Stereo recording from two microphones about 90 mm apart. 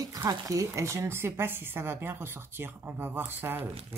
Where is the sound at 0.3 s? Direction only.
40° right (ahead or behind).